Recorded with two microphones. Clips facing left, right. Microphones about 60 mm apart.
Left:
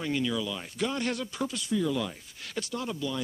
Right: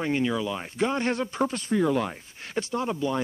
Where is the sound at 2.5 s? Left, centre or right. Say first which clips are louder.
Right 6 dB; right.